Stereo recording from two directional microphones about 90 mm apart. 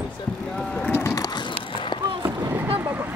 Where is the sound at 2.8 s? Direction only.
20° right (ahead or behind).